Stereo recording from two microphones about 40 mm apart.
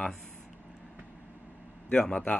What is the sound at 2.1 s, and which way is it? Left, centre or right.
Speech, left.